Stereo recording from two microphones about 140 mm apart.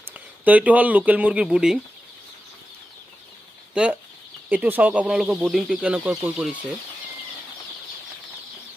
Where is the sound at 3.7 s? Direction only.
5° right (ahead or behind).